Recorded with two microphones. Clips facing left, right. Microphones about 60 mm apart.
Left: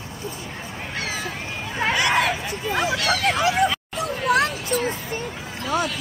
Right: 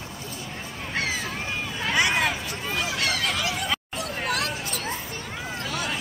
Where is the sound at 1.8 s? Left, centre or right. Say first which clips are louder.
Left 6 dB; left.